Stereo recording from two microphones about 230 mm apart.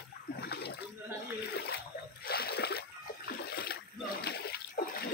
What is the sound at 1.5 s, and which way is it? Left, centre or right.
Splash, left.